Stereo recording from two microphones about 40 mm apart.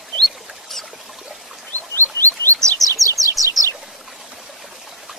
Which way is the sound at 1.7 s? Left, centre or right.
Left.